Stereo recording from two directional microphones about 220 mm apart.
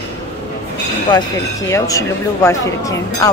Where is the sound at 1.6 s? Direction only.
15° left (ahead or behind).